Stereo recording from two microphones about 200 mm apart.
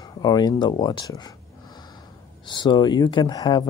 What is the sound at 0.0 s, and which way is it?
Speech, 20° left (ahead or behind).